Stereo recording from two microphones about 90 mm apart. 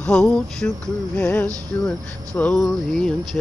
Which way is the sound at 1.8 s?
15° left (ahead or behind).